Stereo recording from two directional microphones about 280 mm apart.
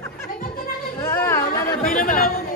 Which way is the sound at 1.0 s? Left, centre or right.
Centre.